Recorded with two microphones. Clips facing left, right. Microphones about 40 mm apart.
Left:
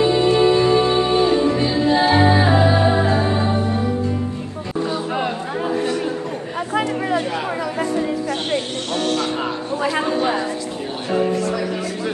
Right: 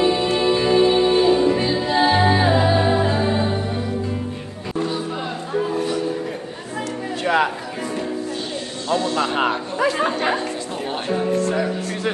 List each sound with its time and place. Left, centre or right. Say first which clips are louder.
0.0 s music: left 3 dB; centre
5.5 s music: even; left
8.9 s music: right 1 dB; left
9.4 s a sound: right 2 dB; right
10.0 s music: left 1 dB; right
11.3 s music: right 1 dB; right